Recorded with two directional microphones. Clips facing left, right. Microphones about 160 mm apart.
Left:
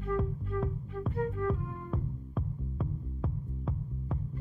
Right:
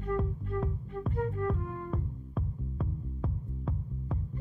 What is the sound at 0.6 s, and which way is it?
Music, centre (ahead or behind).